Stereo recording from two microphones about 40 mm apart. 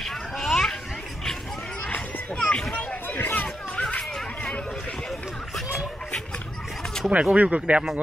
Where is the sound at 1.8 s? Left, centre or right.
Left.